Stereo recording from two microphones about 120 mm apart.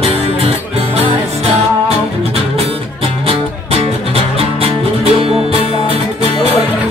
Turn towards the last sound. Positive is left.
turn(degrees=-55)  # may be behind; listen again after turning